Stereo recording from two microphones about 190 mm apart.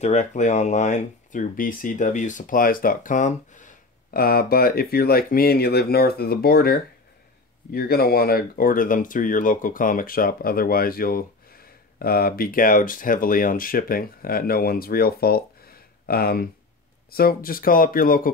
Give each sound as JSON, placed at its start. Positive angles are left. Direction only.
{"t": 0.0, "sound": "speech", "side_deg": 35}